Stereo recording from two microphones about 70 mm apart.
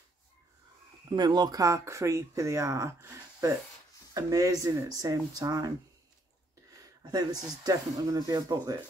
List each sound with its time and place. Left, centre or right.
1.1 s speech: right
1.6 s speech: right
6.7 s a sound: right
7.6 s speech: right